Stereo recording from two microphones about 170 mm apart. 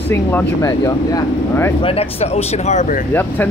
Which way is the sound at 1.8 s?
35° left (ahead or behind).